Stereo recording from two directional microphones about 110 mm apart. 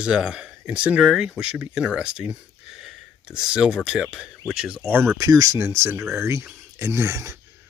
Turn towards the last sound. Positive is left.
turn(degrees=-25)  # may be behind; listen again after turning